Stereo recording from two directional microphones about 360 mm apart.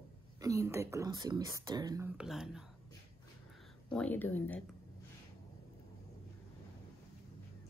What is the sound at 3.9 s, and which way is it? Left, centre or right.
Speech, centre.